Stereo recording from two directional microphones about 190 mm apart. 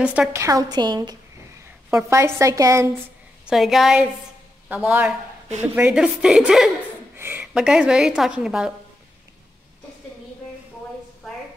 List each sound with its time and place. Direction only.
0.0 s a woman's voice: 5° right (ahead or behind)
3.4 s a woman's voice: centre (ahead or behind)